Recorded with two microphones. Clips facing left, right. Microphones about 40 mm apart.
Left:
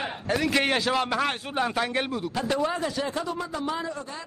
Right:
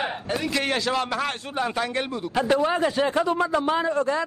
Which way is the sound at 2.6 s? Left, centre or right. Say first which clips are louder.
Right 6 dB; right.